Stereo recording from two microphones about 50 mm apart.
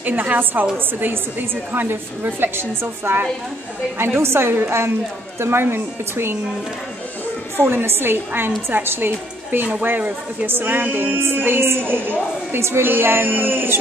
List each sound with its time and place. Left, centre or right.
0.0 s a woman's voice: right
1.7 s a woman's voice: right
7.5 s a woman's voice: right